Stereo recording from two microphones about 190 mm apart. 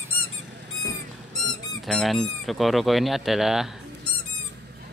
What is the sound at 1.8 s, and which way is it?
Speech, centre (ahead or behind).